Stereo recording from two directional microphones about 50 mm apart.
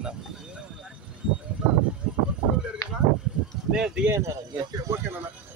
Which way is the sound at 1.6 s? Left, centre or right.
Centre.